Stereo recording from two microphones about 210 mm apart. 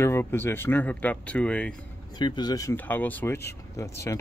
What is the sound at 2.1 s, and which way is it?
Speech, 20° left (ahead or behind).